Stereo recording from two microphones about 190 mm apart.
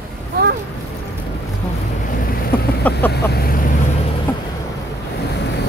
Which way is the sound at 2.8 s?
10° left (ahead or behind).